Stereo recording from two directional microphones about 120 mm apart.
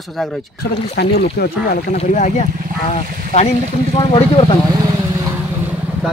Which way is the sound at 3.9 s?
50° left (ahead or behind).